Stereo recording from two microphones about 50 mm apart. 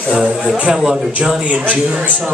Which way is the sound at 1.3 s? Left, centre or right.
Right.